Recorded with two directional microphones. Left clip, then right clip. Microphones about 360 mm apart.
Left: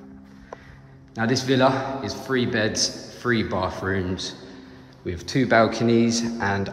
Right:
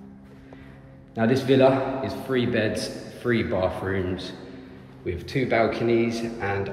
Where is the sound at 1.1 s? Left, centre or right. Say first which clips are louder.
Right 2 dB; centre.